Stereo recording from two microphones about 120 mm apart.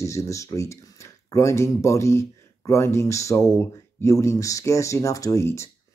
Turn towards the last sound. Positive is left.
turn(degrees=25)  # may be behind; listen again after turning